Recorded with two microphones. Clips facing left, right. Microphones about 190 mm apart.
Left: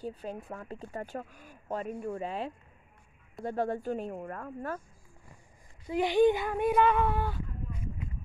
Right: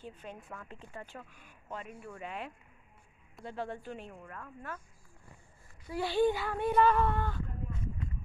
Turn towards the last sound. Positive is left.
turn(degrees=10)  # may be behind; listen again after turning